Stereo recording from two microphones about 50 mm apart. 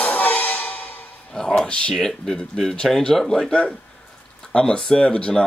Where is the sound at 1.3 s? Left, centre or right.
Centre.